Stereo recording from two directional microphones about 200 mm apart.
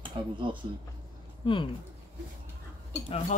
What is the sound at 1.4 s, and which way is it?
Speech, 25° left (ahead or behind).